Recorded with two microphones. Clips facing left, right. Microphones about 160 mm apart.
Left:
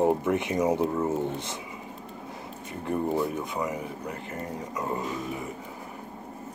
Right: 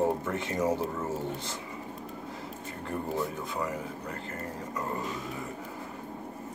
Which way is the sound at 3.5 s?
15° left (ahead or behind).